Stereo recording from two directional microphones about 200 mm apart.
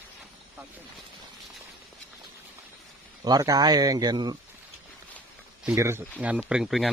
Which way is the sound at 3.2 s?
20° right (ahead or behind).